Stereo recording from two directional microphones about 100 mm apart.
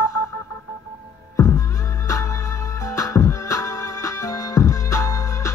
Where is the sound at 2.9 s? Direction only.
35° left (ahead or behind).